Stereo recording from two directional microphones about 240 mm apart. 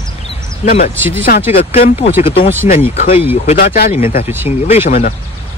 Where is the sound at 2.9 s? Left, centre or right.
Left.